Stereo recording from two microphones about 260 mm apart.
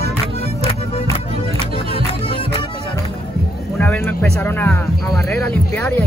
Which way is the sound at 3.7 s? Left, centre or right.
Centre.